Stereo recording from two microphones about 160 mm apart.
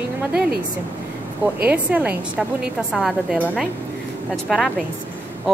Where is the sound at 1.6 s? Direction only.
10° right (ahead or behind).